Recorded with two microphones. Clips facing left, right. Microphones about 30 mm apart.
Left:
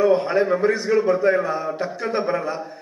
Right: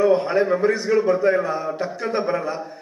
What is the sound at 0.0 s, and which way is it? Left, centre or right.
A man's voice, centre.